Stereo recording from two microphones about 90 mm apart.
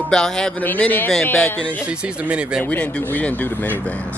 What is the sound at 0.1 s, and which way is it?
Speech, 10° left (ahead or behind).